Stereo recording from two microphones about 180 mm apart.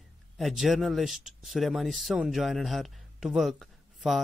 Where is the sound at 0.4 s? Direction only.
Centre (ahead or behind).